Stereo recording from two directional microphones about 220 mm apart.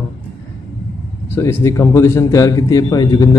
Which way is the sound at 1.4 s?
10° left (ahead or behind).